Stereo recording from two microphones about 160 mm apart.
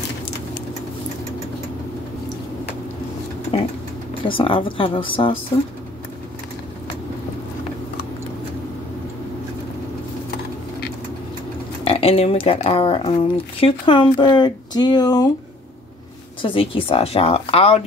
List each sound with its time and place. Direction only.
4.2 s speech: 35° left (ahead or behind)
11.8 s speech: 35° left (ahead or behind)
16.4 s speech: 35° left (ahead or behind)